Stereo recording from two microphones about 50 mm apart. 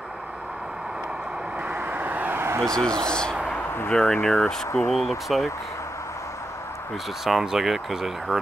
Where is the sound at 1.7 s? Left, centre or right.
Right.